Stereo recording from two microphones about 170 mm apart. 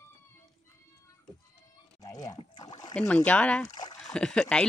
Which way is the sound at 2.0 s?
20° left (ahead or behind).